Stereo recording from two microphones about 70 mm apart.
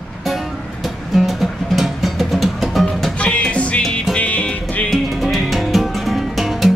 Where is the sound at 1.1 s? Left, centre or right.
Centre.